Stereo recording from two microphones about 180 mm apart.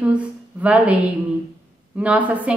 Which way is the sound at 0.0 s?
10° right (ahead or behind).